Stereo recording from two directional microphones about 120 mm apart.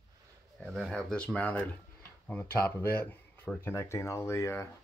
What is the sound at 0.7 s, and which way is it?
Speech, centre (ahead or behind).